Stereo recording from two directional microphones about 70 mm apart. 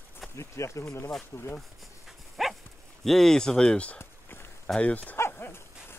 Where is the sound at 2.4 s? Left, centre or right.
Centre.